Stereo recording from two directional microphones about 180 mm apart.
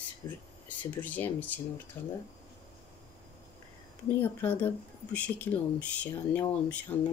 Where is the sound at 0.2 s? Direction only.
15° left (ahead or behind).